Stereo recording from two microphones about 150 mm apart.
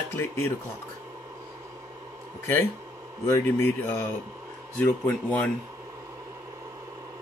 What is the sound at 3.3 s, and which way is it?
Speech, 15° left (ahead or behind).